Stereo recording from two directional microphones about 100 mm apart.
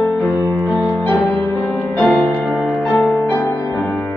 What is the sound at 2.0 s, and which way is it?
Music, centre (ahead or behind).